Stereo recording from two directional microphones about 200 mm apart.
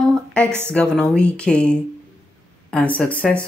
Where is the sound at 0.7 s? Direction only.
5° left (ahead or behind).